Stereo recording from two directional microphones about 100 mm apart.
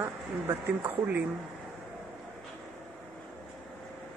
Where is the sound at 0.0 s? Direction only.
25° right (ahead or behind).